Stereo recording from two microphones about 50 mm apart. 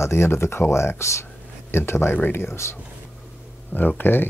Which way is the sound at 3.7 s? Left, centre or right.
Left.